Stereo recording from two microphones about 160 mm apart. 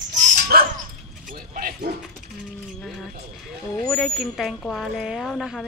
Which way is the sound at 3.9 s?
Centre (ahead or behind).